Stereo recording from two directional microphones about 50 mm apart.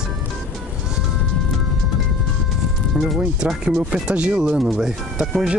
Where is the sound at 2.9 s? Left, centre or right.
Right.